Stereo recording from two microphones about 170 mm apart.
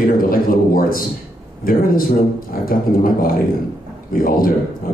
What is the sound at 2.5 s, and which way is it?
Speech, 60° left (ahead or behind).